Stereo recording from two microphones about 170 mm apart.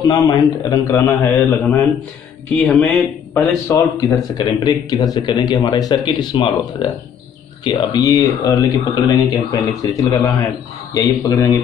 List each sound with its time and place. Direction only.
0.0 s speech: 20° left (ahead or behind); by 3.0 s 5° left (ahead or behind)
3.3 s speech: 15° left (ahead or behind)